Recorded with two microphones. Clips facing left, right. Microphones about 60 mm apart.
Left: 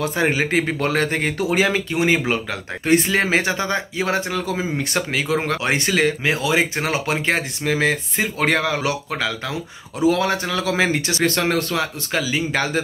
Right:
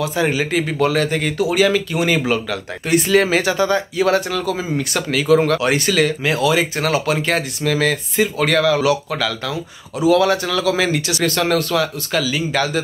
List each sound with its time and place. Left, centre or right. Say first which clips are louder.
0.0 s a man's voice: right 1 dB; left